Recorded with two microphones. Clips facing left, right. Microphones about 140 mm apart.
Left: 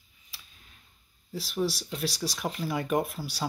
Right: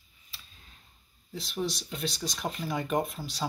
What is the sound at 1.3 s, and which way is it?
Speech, 5° left (ahead or behind).